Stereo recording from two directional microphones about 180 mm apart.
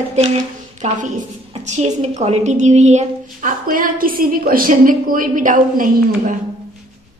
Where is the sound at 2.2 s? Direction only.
40° right (ahead or behind).